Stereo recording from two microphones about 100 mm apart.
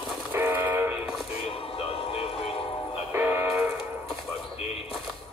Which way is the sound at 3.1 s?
20° right (ahead or behind).